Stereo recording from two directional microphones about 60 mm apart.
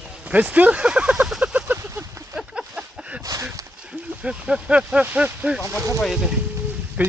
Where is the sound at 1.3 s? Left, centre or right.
Centre.